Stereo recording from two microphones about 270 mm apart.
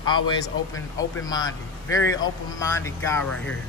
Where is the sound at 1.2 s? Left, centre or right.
Centre.